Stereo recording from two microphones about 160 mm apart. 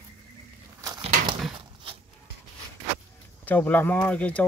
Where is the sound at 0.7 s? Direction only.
20° right (ahead or behind).